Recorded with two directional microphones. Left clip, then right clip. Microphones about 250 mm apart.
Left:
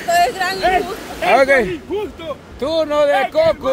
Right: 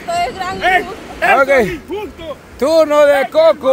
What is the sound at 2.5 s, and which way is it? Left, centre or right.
Speech, right.